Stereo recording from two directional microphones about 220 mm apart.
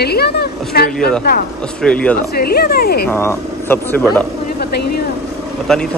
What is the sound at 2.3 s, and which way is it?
Speech, 45° left (ahead or behind).